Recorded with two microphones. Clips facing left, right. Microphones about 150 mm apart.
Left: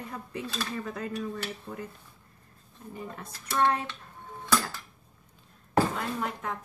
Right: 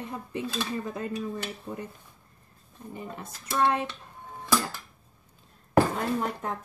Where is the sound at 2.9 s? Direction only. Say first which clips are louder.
Right 1 dB; 20° right (ahead or behind).